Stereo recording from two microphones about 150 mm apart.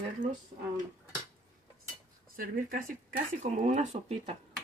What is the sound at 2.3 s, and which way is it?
Speech, 70° right (ahead or behind).